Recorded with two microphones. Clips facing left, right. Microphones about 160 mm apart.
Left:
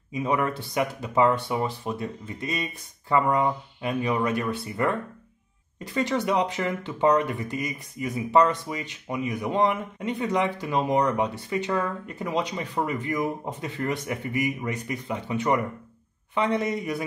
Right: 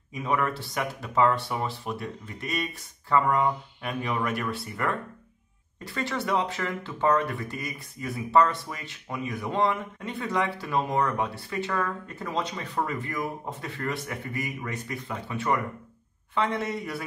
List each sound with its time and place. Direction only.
0.1 s speech: 20° left (ahead or behind)